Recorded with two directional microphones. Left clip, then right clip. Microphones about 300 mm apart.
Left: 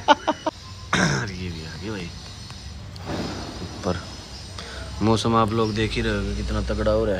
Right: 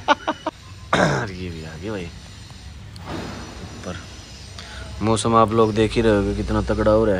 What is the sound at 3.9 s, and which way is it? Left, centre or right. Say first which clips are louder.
Speech: left 7 dB; centre.